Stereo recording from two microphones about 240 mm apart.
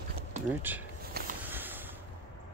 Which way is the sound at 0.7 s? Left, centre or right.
Centre.